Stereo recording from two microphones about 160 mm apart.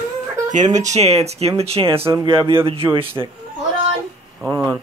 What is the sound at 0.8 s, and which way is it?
Speech, 45° right (ahead or behind).